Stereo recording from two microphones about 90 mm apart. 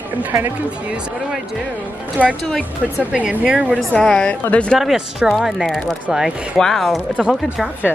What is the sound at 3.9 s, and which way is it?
Speech, 5° left (ahead or behind).